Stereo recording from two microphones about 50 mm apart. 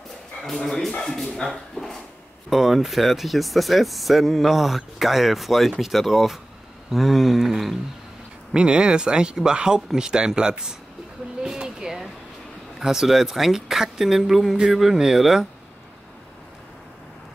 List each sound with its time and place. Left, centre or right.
0.4 s speech: centre
2.5 s speech: centre
8.5 s speech: centre
11.6 s a sound: centre
12.7 s speech: centre